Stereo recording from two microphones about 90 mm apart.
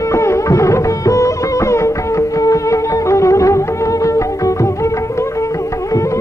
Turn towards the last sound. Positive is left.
turn(degrees=35)  # may be behind; listen again after turning